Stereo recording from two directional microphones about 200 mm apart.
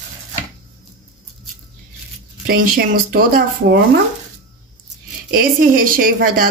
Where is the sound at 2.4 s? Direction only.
45° right (ahead or behind).